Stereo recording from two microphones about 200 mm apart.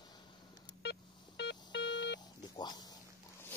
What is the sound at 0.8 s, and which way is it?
Beep, 60° left (ahead or behind).